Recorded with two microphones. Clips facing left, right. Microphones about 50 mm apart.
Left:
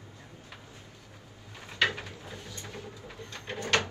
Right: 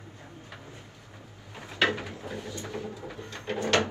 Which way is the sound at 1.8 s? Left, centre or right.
Right.